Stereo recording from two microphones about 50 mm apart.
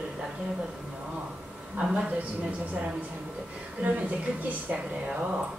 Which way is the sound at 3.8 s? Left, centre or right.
Right.